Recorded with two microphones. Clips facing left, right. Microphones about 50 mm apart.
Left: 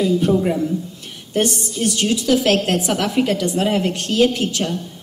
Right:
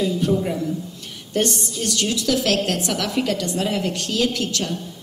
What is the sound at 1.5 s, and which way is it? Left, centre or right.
A woman's voice, left.